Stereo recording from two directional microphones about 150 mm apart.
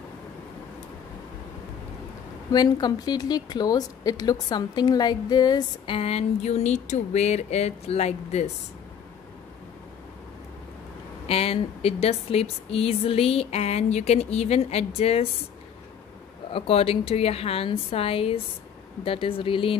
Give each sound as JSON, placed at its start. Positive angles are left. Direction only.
{"t": 2.5, "sound": "speech", "side_deg": 25}
{"t": 5.9, "sound": "speech", "side_deg": 45}
{"t": 11.2, "sound": "speech", "side_deg": 40}
{"t": 16.5, "sound": "a woman's voice", "side_deg": 40}